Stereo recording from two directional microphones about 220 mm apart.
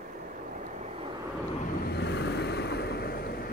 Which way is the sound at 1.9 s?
50° left (ahead or behind).